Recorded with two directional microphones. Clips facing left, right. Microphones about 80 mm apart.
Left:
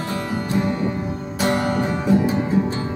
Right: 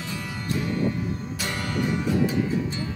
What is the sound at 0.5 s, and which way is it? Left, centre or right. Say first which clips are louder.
Music: left 2 dB; left.